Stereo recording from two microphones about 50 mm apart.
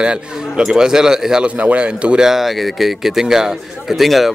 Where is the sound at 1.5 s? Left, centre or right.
Right.